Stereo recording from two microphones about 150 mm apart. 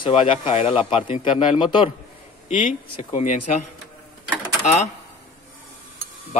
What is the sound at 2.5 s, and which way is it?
Speech, 60° left (ahead or behind).